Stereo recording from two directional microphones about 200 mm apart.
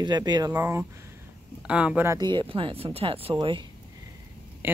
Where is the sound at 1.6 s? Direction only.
5° right (ahead or behind); by 3.7 s 25° right (ahead or behind).